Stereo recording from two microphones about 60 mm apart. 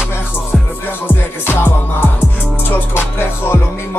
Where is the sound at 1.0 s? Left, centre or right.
Left.